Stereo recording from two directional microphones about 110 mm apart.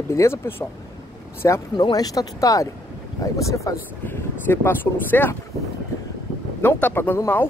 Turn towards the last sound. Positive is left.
turn(degrees=20)  # may be behind; listen again after turning